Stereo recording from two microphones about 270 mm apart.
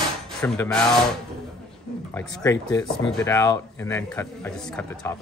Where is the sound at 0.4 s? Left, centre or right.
Centre.